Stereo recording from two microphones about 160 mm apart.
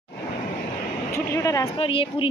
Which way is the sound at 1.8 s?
35° left (ahead or behind).